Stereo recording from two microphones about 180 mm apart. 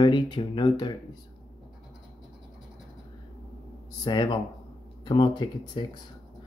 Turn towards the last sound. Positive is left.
turn(degrees=25)  # may be behind; listen again after turning